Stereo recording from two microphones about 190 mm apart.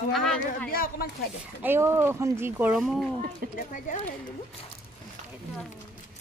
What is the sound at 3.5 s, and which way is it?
Speech, 40° left (ahead or behind).